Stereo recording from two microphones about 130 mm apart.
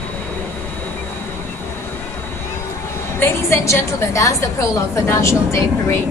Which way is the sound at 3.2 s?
20° left (ahead or behind).